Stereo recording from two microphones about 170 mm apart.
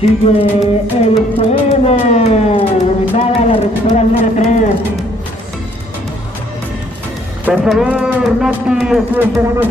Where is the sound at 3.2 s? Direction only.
40° left (ahead or behind).